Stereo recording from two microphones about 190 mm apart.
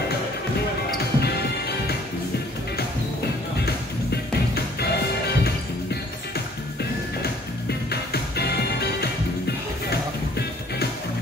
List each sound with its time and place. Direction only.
0.9 s music: 55° left (ahead or behind)
3.5 s music: 55° left (ahead or behind)
7.9 s music: 55° left (ahead or behind)